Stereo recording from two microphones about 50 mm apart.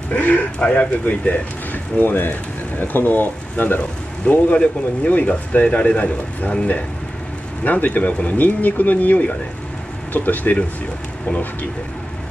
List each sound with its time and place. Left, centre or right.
0.1 s speech: left
4.2 s speech: left